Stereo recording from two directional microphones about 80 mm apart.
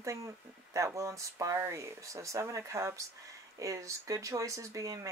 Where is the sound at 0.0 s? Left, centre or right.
Right.